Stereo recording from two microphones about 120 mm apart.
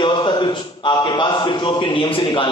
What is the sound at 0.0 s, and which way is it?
A man's voice, 40° left (ahead or behind).